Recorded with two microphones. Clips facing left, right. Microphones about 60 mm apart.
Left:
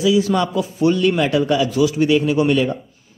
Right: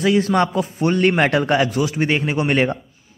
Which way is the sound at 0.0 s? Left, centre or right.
Right.